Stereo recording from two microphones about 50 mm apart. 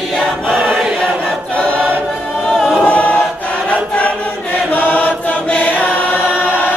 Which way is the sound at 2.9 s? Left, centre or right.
Left.